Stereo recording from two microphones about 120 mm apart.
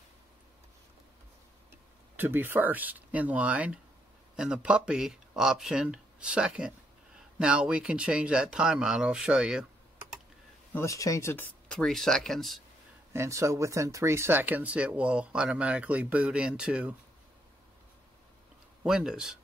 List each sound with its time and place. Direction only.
2.1 s speech: 15° right (ahead or behind)
10.7 s speech: 25° left (ahead or behind)
11.7 s speech: 5° left (ahead or behind)
13.1 s speech: 25° right (ahead or behind)
18.8 s speech: 5° right (ahead or behind)